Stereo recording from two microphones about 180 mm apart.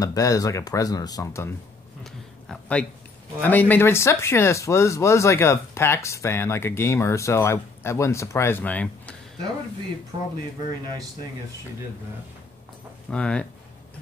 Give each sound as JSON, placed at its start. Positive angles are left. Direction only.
{"t": 0.0, "sound": "speech", "side_deg": 20}
{"t": 2.0, "sound": "a sound", "side_deg": 0}
{"t": 3.3, "sound": "speech", "side_deg": 10}
{"t": 13.1, "sound": "speech", "side_deg": 5}